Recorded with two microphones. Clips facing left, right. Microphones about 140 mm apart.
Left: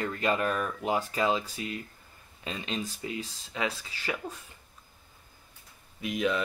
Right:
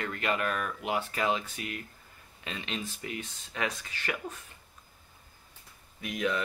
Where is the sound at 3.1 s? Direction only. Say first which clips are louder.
Left 2 dB; 25° left (ahead or behind).